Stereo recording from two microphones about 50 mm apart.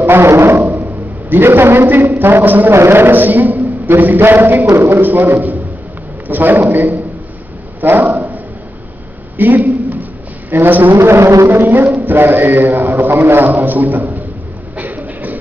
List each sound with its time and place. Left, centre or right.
0.0 s a sound: right
1.3 s a man's voice: right
2.7 s a man's voice: right
4.6 s speech: right
5.0 s a man's voice: right
7.8 s dog: right
9.4 s a sound: right
10.5 s a man's voice: right
11.0 s a man's voice: right
13.5 s speech: right
14.8 s train: right